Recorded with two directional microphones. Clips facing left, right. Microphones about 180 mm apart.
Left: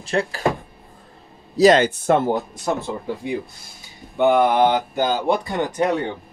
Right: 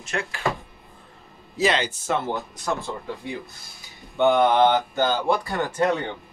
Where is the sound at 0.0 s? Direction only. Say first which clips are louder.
Left 7 dB; 35° left (ahead or behind).